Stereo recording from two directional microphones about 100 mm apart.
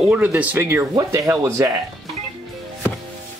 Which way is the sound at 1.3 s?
30° right (ahead or behind).